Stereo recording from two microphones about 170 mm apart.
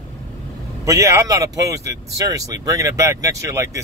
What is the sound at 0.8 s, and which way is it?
Speech, 15° right (ahead or behind).